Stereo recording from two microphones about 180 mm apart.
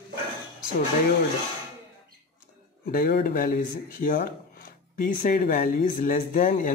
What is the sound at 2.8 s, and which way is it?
Speech, 60° left (ahead or behind).